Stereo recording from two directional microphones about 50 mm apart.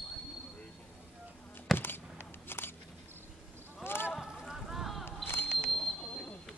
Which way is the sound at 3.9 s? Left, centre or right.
Left.